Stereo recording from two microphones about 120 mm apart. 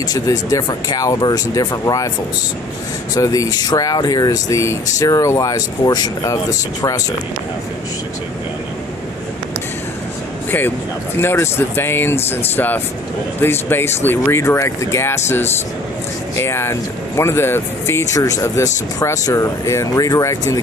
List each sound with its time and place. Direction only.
0.0 s speech: 35° left (ahead or behind)
3.2 s speech: 30° left (ahead or behind)
11.1 s speech: 20° left (ahead or behind)